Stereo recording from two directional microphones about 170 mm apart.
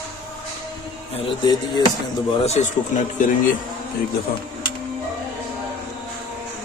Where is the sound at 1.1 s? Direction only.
30° left (ahead or behind).